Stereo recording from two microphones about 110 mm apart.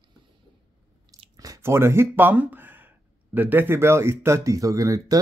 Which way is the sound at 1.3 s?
30° right (ahead or behind).